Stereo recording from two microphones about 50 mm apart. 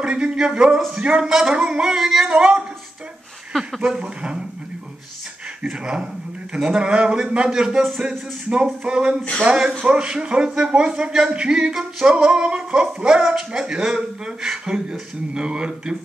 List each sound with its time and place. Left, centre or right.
0.0 s speech: centre
3.5 s speech: centre
3.9 s speech: centre
5.7 s speech: centre